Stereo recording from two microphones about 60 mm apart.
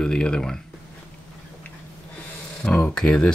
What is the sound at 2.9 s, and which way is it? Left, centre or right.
Speech, centre.